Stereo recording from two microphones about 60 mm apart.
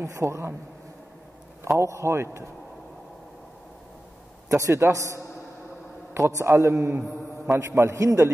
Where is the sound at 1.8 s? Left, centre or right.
Right.